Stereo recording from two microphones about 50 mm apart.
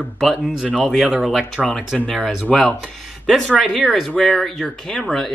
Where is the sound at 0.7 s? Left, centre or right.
Centre.